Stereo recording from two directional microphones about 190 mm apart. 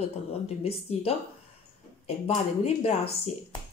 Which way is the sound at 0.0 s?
30° left (ahead or behind).